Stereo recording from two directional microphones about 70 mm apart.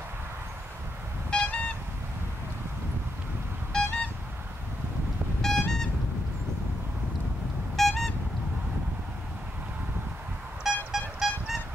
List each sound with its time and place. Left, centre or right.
1.3 s vehicle: centre
3.7 s a sound: centre
5.4 s vehicle: centre
7.7 s vehicle: centre
10.9 s vehicle: centre